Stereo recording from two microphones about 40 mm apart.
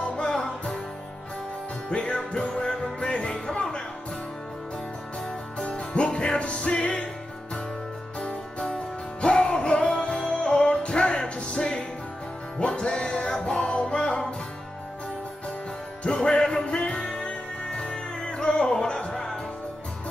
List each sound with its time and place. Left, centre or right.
0.0 s music: left
1.9 s music: left
2.5 s music: centre
3.0 s music: left
5.6 s music: left
8.2 s music: left
16.0 s music: left